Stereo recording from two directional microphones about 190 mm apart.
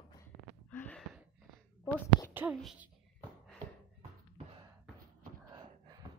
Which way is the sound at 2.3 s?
10° right (ahead or behind).